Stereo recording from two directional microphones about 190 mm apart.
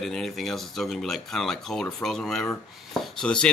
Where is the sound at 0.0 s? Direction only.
Centre (ahead or behind).